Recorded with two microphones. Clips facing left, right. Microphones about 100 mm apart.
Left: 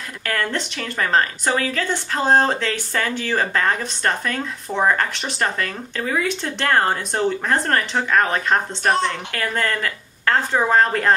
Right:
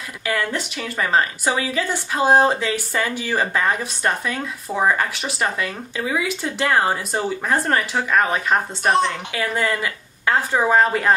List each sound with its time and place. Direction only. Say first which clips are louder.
0.3 s a woman's voice: right 1 dB; 5° right (ahead or behind)